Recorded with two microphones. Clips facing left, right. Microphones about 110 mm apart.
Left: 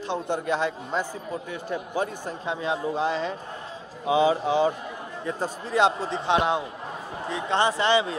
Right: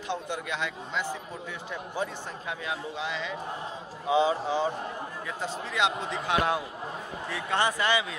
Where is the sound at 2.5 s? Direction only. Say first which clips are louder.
Left 8 dB; 30° left (ahead or behind).